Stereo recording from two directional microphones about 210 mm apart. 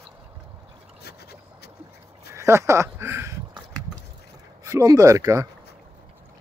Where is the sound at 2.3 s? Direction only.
15° right (ahead or behind).